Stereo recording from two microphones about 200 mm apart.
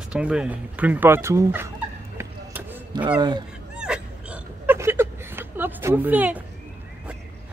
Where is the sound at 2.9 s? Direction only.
25° right (ahead or behind).